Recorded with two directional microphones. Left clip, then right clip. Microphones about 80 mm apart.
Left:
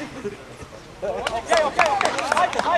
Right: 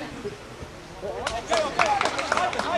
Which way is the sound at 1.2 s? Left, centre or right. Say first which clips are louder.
Left 5 dB; left.